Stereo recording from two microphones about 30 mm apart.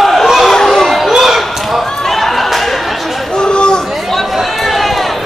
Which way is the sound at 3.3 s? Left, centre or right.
Left.